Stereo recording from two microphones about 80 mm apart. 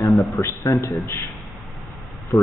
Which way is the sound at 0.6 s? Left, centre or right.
Left.